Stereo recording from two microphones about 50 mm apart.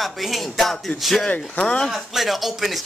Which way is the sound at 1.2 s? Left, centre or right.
Left.